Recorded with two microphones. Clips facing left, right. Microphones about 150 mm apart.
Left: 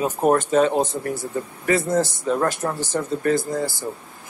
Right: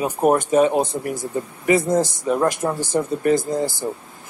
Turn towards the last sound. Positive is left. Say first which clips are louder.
# right 2 dB
turn(degrees=-20)  # may be behind; listen again after turning